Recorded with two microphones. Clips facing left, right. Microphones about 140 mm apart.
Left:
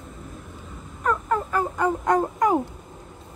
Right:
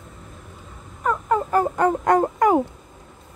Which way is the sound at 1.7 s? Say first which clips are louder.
Right 1 dB; 70° right (ahead or behind).